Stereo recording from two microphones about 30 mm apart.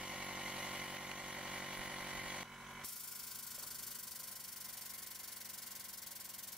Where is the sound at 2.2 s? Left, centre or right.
Right.